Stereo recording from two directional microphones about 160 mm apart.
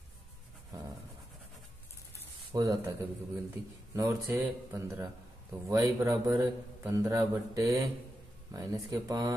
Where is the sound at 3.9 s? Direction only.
15° right (ahead or behind).